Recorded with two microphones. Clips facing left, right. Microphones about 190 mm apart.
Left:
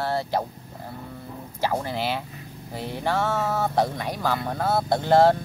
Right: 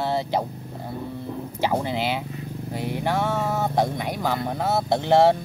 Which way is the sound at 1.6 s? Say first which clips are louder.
Right 2 dB; 15° right (ahead or behind).